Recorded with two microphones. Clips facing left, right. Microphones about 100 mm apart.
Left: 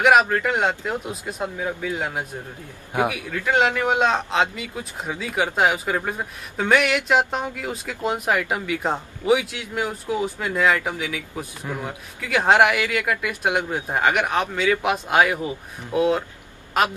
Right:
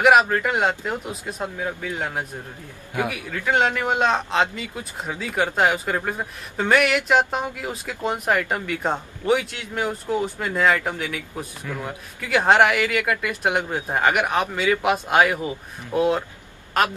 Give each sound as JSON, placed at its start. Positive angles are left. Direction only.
{"t": 0.0, "sound": "speech", "side_deg": -5}
{"t": 3.3, "sound": "speech", "side_deg": 0}
{"t": 11.7, "sound": "a man's voice", "side_deg": 30}
{"t": 12.2, "sound": "speech", "side_deg": 0}